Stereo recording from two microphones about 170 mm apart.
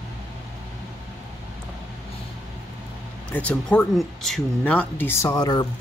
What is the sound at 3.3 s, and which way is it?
Speech, 10° left (ahead or behind).